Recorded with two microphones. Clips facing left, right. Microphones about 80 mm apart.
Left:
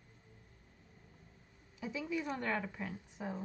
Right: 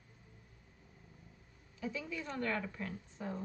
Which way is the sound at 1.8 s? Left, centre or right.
Centre.